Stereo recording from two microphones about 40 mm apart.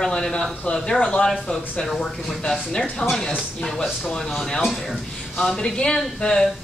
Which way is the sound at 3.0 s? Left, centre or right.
Centre.